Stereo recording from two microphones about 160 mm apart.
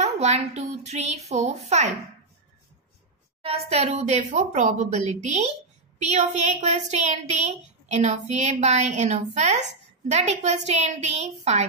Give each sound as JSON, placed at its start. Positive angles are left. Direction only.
{"t": 0.0, "sound": "a woman's voice", "side_deg": -45}
{"t": 3.4, "sound": "a woman's voice", "side_deg": -40}